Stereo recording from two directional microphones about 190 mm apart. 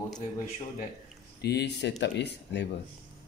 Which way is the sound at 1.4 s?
60° left (ahead or behind).